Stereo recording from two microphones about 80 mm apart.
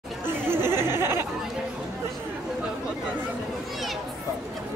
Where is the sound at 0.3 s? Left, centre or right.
Right.